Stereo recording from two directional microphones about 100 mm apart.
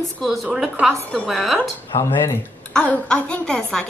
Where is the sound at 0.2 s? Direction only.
Centre (ahead or behind).